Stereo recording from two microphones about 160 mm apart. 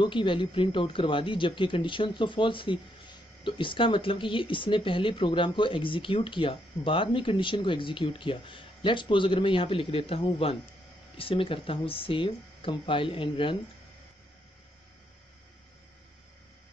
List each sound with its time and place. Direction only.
0.0 s speech: 30° left (ahead or behind)